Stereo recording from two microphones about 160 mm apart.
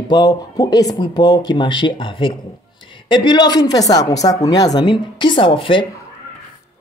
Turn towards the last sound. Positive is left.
turn(degrees=30)  # may be behind; listen again after turning